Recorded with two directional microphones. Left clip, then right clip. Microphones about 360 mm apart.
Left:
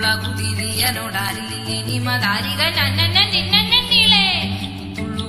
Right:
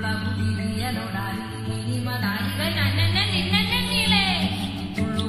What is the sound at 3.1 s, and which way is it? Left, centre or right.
Music, centre.